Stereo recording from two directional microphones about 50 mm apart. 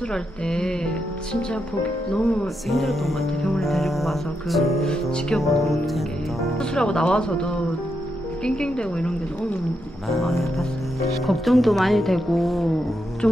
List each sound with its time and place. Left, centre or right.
0.1 s speech: centre
2.4 s speech: centre
6.6 s speech: centre
10.0 s speech: centre
13.2 s speech: centre